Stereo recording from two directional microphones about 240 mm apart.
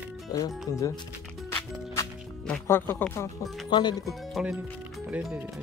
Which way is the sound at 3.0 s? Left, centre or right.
Centre.